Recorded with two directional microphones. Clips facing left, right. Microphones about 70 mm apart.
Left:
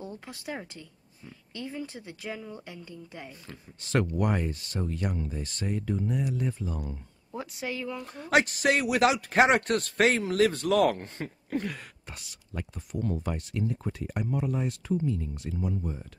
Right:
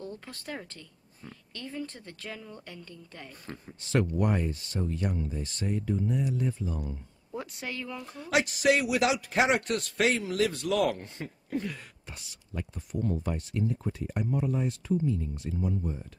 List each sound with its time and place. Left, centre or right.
0.0 s speech: centre
3.9 s speech: left
7.2 s speech: centre
8.1 s speech: left